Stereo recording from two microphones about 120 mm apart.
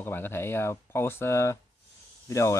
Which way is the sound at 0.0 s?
15° left (ahead or behind).